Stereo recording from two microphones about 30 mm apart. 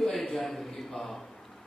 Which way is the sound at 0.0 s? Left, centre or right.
Centre.